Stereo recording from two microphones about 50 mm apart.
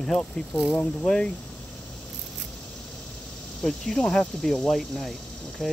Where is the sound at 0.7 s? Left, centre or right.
Left.